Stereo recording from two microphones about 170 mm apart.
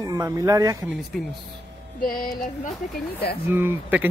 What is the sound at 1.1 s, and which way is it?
Speech, centre (ahead or behind).